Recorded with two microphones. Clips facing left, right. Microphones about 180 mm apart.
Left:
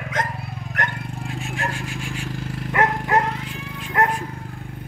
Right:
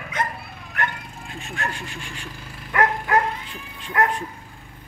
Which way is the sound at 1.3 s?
5° left (ahead or behind).